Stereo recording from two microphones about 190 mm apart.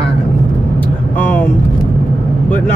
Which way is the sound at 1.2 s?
10° left (ahead or behind).